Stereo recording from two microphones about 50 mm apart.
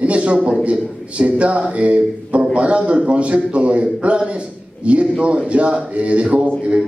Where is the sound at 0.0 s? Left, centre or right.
Right.